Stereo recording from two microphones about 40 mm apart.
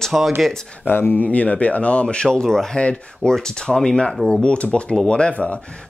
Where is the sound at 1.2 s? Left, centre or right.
Left.